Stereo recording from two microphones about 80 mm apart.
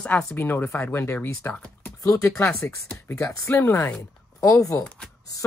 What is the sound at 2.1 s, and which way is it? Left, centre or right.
Speech, left.